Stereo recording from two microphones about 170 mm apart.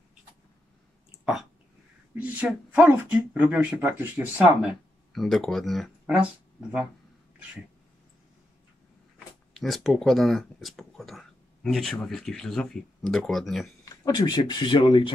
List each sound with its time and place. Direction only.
2.1 s speech: 10° right (ahead or behind)
9.6 s speech: centre (ahead or behind)
14.0 s speech: 25° left (ahead or behind)